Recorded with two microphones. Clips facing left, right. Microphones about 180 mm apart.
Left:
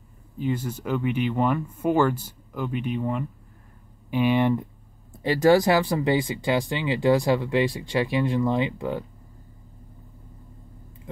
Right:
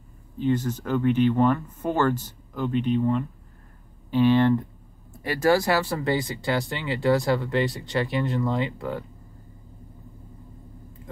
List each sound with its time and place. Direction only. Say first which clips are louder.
0.4 s speech: right 3 dB; 10° left (ahead or behind)